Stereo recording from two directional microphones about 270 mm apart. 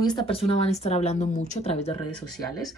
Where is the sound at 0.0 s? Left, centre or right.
Centre.